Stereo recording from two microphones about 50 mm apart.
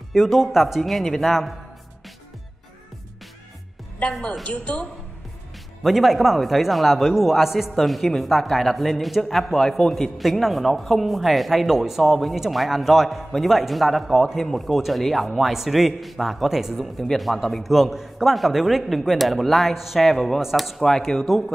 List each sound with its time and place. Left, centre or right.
0.1 s speech: centre
4.2 s a woman's voice: centre
5.8 s speech: centre